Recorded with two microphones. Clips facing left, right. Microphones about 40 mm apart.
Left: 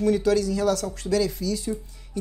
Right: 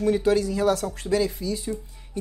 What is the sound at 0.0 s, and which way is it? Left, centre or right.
Speech, right.